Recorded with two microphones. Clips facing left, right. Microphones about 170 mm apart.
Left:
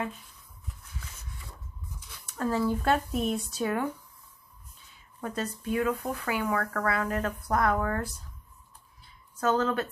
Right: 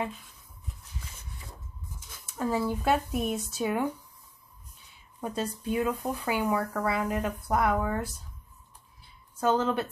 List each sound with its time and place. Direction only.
2.3 s speech: 10° right (ahead or behind)
5.2 s speech: 10° right (ahead or behind)
9.4 s speech: 15° right (ahead or behind)